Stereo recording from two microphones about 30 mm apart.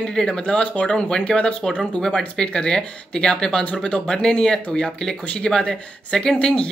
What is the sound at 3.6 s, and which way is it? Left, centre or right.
Speech, left.